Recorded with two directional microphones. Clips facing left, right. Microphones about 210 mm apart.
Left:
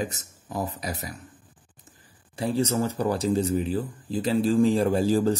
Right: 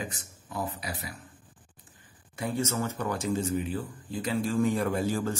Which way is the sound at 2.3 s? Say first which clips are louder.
Left 5 dB; 30° left (ahead or behind).